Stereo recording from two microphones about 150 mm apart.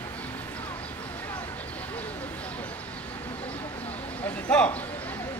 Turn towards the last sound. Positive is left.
turn(degrees=10)  # may be behind; listen again after turning